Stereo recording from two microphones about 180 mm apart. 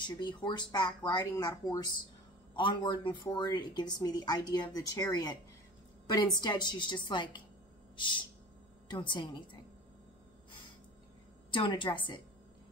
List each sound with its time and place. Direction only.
0.0 s speech: 25° left (ahead or behind)
6.4 s speech: 25° left (ahead or behind)
7.9 s a sound: 25° left (ahead or behind)
8.8 s speech: 25° left (ahead or behind)
11.5 s speech: 25° left (ahead or behind)